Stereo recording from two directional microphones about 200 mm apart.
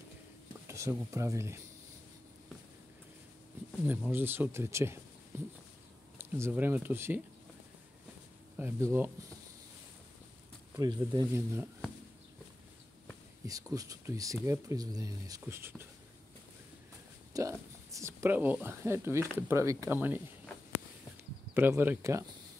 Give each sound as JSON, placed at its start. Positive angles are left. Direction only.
{"t": 0.7, "sound": "speech", "side_deg": -15}
{"t": 3.8, "sound": "speech", "side_deg": -10}
{"t": 8.5, "sound": "speech", "side_deg": -10}
{"t": 10.8, "sound": "speech", "side_deg": -20}
{"t": 13.5, "sound": "speech", "side_deg": -15}
{"t": 17.3, "sound": "speech", "side_deg": -15}
{"t": 21.5, "sound": "speech", "side_deg": -10}